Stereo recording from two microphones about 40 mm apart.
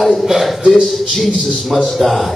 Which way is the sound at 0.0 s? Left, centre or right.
Centre.